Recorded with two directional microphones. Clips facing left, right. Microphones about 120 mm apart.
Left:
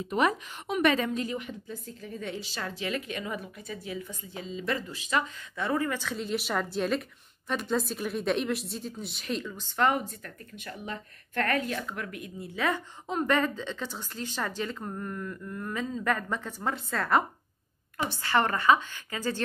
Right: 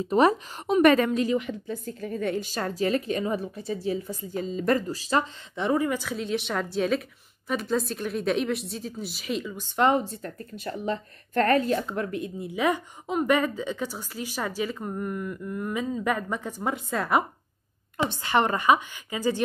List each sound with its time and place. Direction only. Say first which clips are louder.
0.0 s a woman's voice: right 6 dB; 35° right (ahead or behind)
0.8 s a woman's voice: right 6 dB; 60° right (ahead or behind); by 5.3 s 35° right (ahead or behind)
5.6 s a woman's voice: right 4 dB; 15° right (ahead or behind)
6.1 s a woman's voice: right 2 dB; centre (ahead or behind)
9.8 s a woman's voice: right 4 dB; 25° right (ahead or behind)
12.4 s a woman's voice: right 4 dB; 15° right (ahead or behind)